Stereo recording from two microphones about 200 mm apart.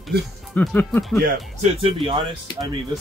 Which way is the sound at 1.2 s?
30° right (ahead or behind).